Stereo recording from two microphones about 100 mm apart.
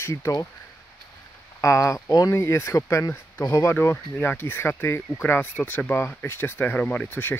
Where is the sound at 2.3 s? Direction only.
25° left (ahead or behind).